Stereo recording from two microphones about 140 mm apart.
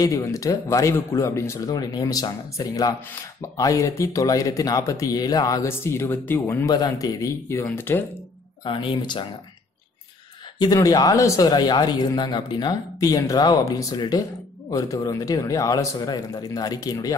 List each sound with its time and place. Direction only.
0.0 s speech: 25° left (ahead or behind)
6.7 s speech: 30° left (ahead or behind)
8.6 s speech: 35° left (ahead or behind)
10.6 s speech: 25° left (ahead or behind)